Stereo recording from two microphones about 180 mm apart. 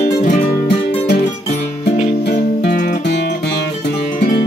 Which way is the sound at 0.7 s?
65° left (ahead or behind).